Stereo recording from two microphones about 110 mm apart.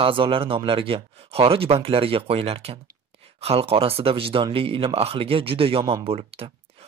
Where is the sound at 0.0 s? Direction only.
55° right (ahead or behind).